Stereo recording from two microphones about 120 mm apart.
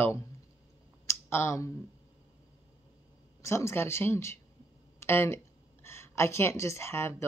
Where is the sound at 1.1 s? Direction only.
20° left (ahead or behind).